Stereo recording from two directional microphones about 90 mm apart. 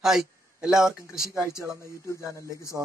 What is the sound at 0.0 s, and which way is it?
Speech, 5° right (ahead or behind).